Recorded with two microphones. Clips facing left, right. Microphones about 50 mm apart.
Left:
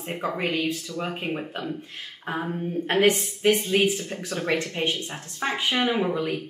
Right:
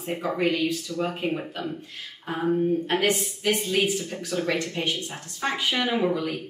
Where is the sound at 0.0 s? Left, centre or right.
Left.